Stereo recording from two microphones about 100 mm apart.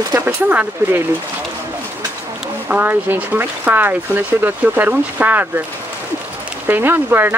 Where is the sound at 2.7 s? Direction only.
20° right (ahead or behind).